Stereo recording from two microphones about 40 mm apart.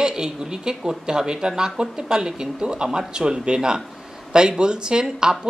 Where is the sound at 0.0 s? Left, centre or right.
Centre.